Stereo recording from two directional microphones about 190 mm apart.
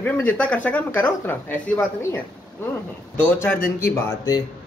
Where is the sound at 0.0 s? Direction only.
10° left (ahead or behind).